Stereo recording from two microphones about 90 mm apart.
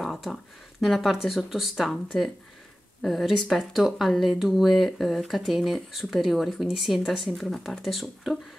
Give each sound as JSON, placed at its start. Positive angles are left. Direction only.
{"t": 0.0, "sound": "speech", "side_deg": 5}